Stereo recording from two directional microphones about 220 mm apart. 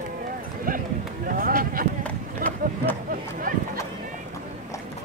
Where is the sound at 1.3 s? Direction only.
40° right (ahead or behind).